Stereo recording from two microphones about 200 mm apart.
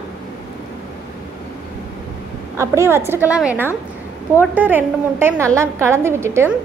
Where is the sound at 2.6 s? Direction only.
15° right (ahead or behind).